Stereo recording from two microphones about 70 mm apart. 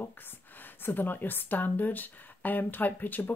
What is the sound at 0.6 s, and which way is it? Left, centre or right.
A woman's voice, left.